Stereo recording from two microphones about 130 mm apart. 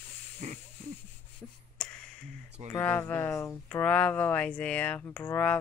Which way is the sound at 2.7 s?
15° left (ahead or behind).